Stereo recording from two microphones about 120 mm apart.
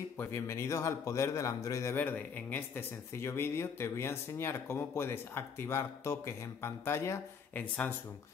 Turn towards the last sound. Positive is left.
turn(degrees=20)  # may be behind; listen again after turning